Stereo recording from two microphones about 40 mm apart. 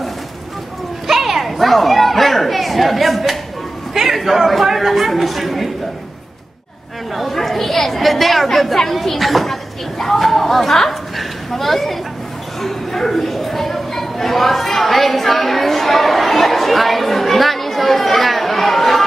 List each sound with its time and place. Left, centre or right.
1.0 s children playing: centre
3.9 s speech: centre
7.2 s a woman's voice: centre